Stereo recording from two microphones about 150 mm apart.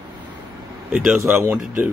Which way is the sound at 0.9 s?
10° right (ahead or behind).